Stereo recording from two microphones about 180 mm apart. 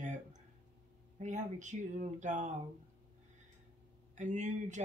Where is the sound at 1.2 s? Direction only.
40° right (ahead or behind).